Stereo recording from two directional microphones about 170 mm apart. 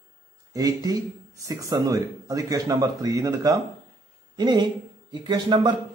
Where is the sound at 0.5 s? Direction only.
20° right (ahead or behind).